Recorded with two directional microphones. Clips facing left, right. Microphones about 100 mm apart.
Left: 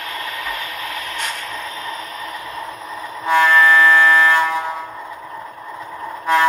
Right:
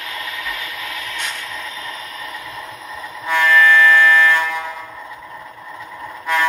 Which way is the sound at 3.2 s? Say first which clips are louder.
Left 1 dB; 35° left (ahead or behind).